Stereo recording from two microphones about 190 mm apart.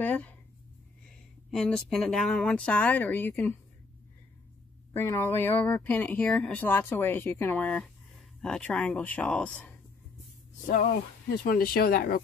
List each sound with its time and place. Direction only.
0.0 s a sound: 10° left (ahead or behind)
1.0 s speech: 5° left (ahead or behind)
4.9 s speech: 15° left (ahead or behind)
10.7 s speech: 50° left (ahead or behind)